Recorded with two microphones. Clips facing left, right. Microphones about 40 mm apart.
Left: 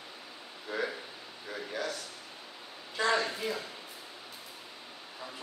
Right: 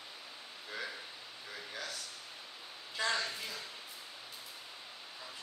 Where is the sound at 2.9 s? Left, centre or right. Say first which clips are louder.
Left 6 dB; centre.